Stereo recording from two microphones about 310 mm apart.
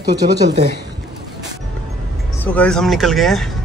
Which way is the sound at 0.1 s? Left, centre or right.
Right.